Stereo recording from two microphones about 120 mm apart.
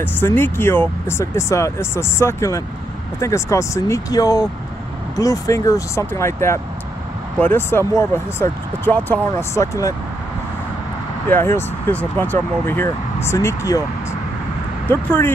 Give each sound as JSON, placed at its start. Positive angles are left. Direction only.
{"t": 0.0, "sound": "speech", "side_deg": 15}
{"t": 11.2, "sound": "speech", "side_deg": 20}
{"t": 14.9, "sound": "speech", "side_deg": 15}